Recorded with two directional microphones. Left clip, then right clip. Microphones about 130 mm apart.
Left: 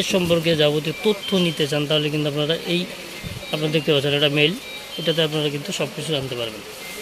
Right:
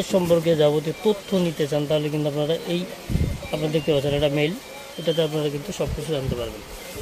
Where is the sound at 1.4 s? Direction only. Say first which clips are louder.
Left 2 dB; 15° right (ahead or behind).